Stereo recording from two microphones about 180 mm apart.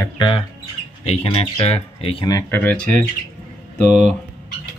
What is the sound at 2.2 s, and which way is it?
Speech, 20° left (ahead or behind).